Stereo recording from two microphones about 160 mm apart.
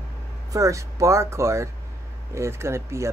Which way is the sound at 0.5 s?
20° right (ahead or behind).